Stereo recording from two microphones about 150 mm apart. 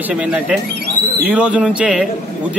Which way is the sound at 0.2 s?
10° right (ahead or behind).